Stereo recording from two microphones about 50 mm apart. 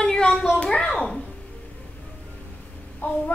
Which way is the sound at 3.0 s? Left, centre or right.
Left.